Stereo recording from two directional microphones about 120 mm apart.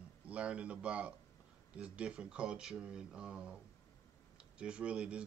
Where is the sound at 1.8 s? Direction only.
10° right (ahead or behind).